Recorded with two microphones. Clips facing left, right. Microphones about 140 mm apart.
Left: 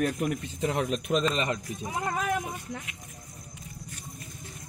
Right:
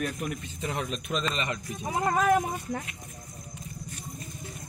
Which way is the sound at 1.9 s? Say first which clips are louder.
Right 6 dB; 45° right (ahead or behind).